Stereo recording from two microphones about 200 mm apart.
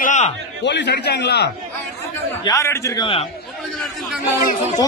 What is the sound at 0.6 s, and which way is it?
Speech, 60° left (ahead or behind).